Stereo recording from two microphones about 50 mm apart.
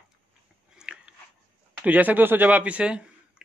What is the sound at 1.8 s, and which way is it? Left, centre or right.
Speech, right.